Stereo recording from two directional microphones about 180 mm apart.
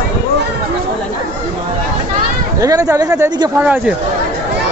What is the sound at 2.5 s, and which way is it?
Speech, 20° right (ahead or behind).